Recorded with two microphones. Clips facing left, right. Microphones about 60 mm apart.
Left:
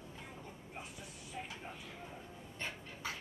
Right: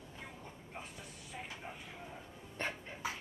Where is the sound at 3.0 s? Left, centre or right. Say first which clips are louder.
Right 2 dB; centre.